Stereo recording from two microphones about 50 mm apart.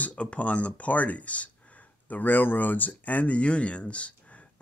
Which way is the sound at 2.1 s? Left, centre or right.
Left.